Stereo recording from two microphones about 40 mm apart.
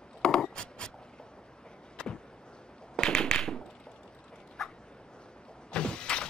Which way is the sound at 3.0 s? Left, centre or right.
Left.